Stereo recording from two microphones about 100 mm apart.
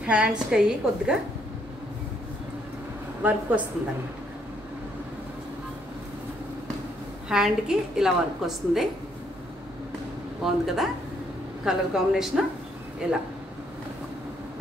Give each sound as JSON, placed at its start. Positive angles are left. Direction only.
{"t": 0.0, "sound": "a woman's voice", "side_deg": -10}
{"t": 3.2, "sound": "a woman's voice", "side_deg": -15}
{"t": 7.2, "sound": "a woman's voice", "side_deg": -5}
{"t": 10.4, "sound": "a woman's voice", "side_deg": -5}